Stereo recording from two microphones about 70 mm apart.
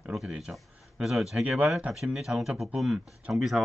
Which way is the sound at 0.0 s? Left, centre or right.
Centre.